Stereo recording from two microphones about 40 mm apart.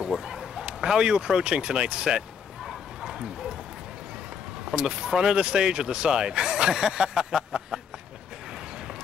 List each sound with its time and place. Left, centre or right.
0.3 s speech: centre
2.6 s bow-wow: centre
4.7 s speech: centre